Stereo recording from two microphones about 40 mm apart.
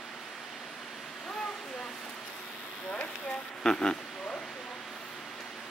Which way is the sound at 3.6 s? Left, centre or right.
Centre.